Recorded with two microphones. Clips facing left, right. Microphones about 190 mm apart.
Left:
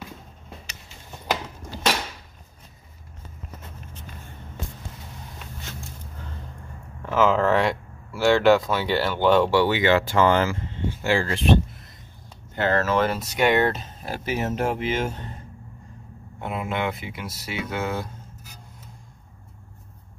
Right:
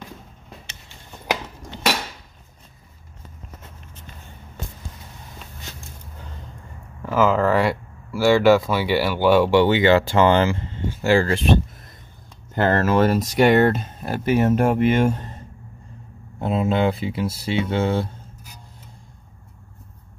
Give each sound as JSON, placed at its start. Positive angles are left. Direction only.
{"t": 7.1, "sound": "speech", "side_deg": -5}
{"t": 9.6, "sound": "speech", "side_deg": -25}
{"t": 12.5, "sound": "speech", "side_deg": -45}
{"t": 16.3, "sound": "speech", "side_deg": -30}